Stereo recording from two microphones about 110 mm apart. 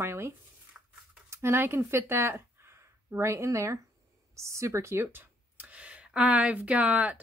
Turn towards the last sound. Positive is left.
turn(degrees=-10)  # may be behind; listen again after turning